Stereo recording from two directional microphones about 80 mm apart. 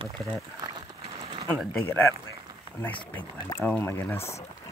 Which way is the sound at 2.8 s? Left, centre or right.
Left.